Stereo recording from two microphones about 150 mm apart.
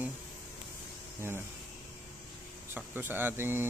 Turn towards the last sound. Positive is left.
turn(degrees=-15)  # may be behind; listen again after turning